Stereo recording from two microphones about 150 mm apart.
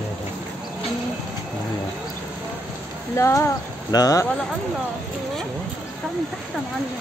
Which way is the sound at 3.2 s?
20° left (ahead or behind).